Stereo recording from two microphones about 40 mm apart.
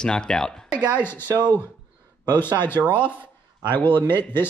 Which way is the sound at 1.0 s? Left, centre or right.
Left.